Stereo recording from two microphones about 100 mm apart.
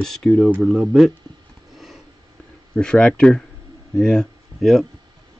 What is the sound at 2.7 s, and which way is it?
Speech, 10° left (ahead or behind).